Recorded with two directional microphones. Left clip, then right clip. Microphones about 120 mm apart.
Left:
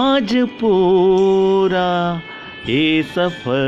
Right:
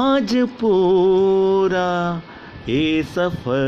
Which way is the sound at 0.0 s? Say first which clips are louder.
Left 2 dB; 30° left (ahead or behind).